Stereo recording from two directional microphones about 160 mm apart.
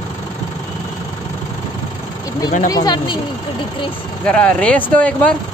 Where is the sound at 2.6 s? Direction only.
25° left (ahead or behind).